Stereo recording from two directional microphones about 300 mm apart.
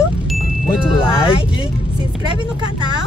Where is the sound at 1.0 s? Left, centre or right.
Centre.